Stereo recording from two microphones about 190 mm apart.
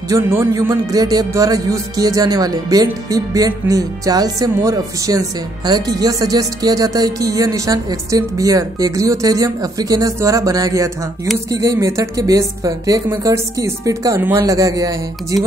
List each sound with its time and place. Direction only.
0.1 s a woman's voice: 15° right (ahead or behind)